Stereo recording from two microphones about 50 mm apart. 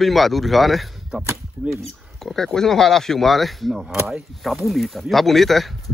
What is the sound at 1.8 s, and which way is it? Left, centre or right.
Speech, centre.